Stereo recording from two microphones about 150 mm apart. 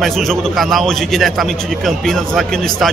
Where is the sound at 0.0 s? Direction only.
Centre (ahead or behind).